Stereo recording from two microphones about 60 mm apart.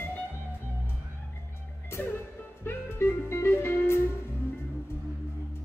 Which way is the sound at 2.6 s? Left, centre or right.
Left.